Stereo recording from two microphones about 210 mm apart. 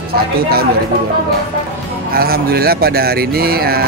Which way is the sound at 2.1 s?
45° right (ahead or behind).